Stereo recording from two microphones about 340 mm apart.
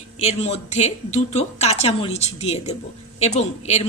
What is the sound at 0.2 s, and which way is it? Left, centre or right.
Speech, centre.